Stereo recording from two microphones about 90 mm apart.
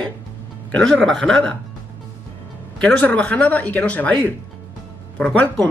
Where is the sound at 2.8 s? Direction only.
15° left (ahead or behind).